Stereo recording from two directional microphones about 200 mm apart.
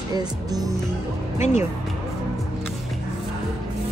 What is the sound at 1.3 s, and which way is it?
Speech, 35° left (ahead or behind).